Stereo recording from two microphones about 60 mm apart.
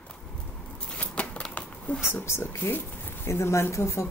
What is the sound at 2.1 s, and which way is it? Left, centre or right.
Speech, left.